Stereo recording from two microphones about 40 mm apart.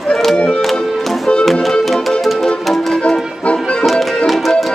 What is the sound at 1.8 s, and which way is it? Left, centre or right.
Music, centre.